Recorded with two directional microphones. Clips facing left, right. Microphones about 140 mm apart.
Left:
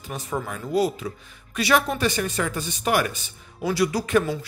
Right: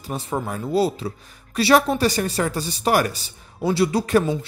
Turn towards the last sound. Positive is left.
turn(degrees=-25)  # may be behind; listen again after turning